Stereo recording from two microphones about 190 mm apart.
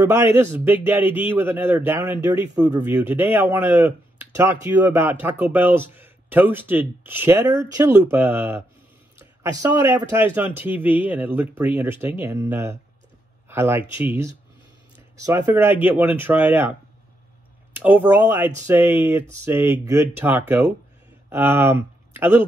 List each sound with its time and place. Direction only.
0.0 s a man's voice: 10° right (ahead or behind)
17.7 s a man's voice: 10° right (ahead or behind)